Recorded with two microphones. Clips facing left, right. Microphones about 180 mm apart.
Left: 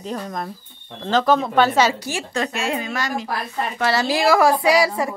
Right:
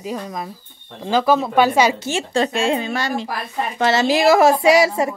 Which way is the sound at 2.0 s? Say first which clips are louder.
Right 5 dB; 25° right (ahead or behind).